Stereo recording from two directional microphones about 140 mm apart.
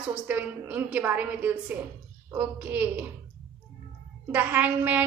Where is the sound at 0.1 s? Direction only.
10° right (ahead or behind).